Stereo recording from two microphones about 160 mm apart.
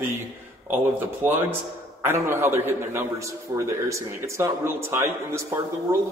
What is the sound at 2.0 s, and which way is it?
A man's voice, 15° right (ahead or behind).